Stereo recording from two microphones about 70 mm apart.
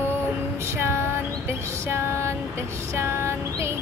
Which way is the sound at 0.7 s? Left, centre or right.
Right.